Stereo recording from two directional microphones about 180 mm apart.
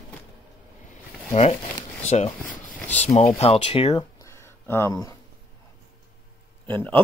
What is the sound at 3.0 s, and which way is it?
Speech, 35° left (ahead or behind).